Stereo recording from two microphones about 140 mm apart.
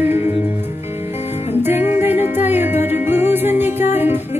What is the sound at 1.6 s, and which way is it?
Music, 15° right (ahead or behind).